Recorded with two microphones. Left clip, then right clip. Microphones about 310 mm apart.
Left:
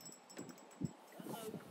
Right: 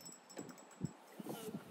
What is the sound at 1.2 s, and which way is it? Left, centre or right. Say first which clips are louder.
Boat: even; centre.